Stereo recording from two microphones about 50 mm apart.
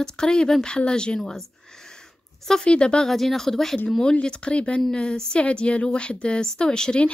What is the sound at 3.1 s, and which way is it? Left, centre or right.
A woman's voice, centre.